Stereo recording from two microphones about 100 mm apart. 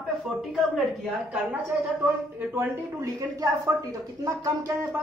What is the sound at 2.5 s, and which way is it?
Speech, 35° right (ahead or behind).